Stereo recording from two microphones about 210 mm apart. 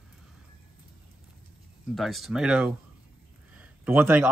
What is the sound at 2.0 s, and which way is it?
A man's voice, centre (ahead or behind).